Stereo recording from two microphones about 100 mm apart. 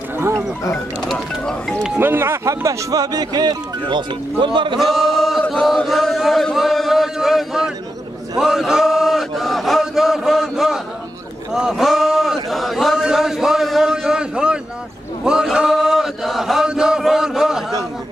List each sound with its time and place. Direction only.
1.1 s speech: 5° left (ahead or behind)
2.0 s speech: 25° right (ahead or behind); by 4.7 s 55° right (ahead or behind)
4.7 s a sound: centre (ahead or behind)
8.4 s chant: 5° right (ahead or behind)
11.5 s a sound: 5° right (ahead or behind)
15.2 s chant: 5° right (ahead or behind)